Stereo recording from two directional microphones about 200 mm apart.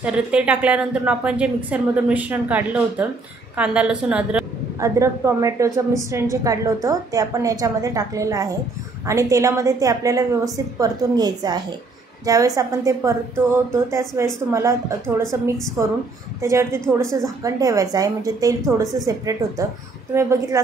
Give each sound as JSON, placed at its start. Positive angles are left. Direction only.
{"t": 0.0, "sound": "a woman's voice", "side_deg": -5}